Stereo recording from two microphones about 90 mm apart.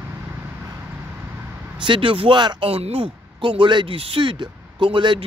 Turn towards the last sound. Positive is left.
turn(degrees=-65)  # may be behind; listen again after turning